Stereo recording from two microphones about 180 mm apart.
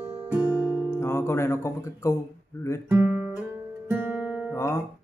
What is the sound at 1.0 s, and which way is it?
Music, 15° left (ahead or behind).